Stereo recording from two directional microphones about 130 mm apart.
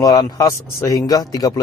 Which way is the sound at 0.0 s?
25° left (ahead or behind).